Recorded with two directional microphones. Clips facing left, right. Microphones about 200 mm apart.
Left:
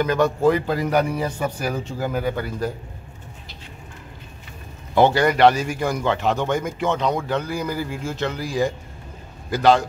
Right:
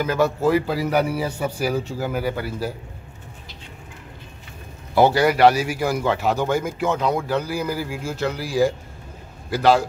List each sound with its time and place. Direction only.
0.0 s a man's voice: 5° right (ahead or behind)
4.9 s a man's voice: 10° right (ahead or behind)